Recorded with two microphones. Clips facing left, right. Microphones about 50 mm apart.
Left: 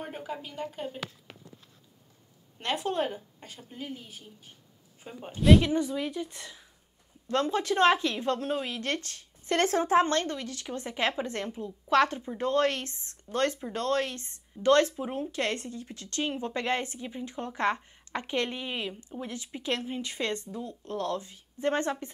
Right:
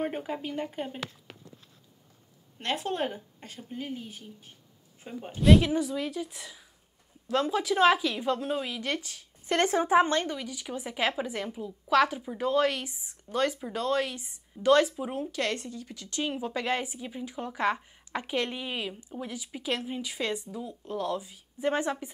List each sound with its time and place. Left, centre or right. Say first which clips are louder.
0.0 s speech: right 5 dB; right
2.6 s a woman's voice: left 1 dB; centre
15.3 s speech: even; left
16.2 s a woman's voice: even; centre